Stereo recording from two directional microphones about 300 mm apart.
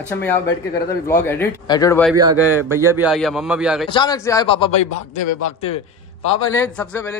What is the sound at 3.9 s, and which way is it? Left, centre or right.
A man's voice, centre.